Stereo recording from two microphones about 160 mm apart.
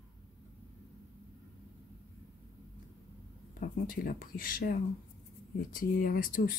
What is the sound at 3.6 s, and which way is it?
Speech, 60° left (ahead or behind).